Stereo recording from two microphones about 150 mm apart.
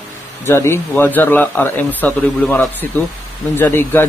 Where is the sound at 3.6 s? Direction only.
15° left (ahead or behind).